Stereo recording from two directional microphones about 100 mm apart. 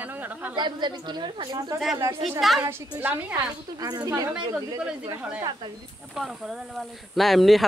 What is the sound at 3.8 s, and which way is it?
Speech, 40° right (ahead or behind).